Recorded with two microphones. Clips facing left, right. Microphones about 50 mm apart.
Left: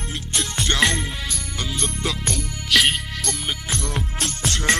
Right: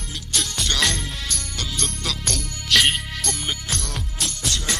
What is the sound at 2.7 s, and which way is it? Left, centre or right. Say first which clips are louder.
Music: even; centre.